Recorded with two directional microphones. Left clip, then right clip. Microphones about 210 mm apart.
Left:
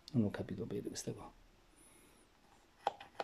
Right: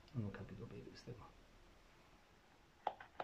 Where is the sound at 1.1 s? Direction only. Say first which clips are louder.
Left 10 dB; 40° left (ahead or behind).